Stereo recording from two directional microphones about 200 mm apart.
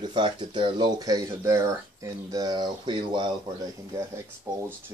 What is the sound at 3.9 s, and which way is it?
Speech, 15° right (ahead or behind).